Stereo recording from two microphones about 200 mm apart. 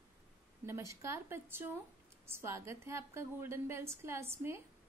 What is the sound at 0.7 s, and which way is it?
A woman's voice, 15° right (ahead or behind).